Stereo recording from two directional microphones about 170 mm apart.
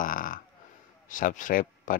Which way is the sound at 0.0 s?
50° left (ahead or behind).